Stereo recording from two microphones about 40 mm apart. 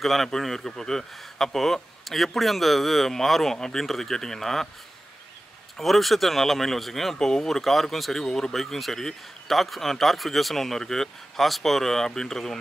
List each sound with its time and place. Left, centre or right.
0.0 s speech: centre
1.1 s speech: centre
5.8 s speech: centre